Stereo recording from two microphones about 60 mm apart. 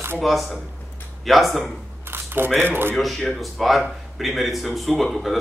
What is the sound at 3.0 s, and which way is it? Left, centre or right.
Speech, centre.